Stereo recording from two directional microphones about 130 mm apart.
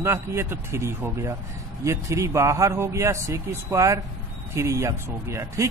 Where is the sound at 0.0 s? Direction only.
20° right (ahead or behind).